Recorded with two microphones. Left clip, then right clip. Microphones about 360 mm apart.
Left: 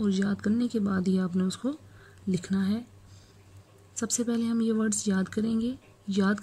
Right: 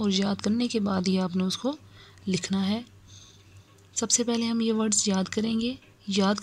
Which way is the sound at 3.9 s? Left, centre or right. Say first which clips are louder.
Right 4 dB; centre.